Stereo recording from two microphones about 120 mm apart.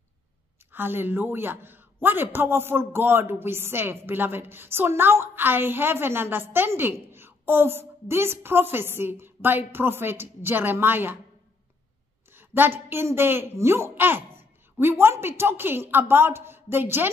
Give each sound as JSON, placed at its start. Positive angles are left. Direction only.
{"t": 0.7, "sound": "a man's voice", "side_deg": -15}
{"t": 12.3, "sound": "a man's voice", "side_deg": -20}